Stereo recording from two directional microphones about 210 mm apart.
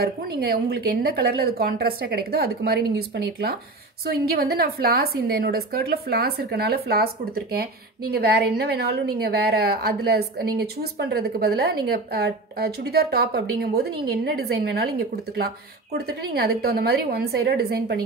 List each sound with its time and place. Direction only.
0.0 s a woman's voice: 50° right (ahead or behind)